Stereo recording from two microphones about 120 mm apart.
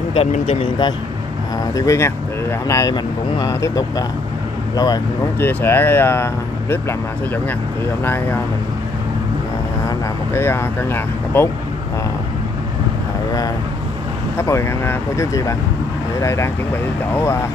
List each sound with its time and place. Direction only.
0.6 s speech: 40° left (ahead or behind)
1.8 s speech: 25° left (ahead or behind)
5.4 s speech: 15° left (ahead or behind)
9.8 s speech: 20° left (ahead or behind)
14.4 s speech: 25° left (ahead or behind)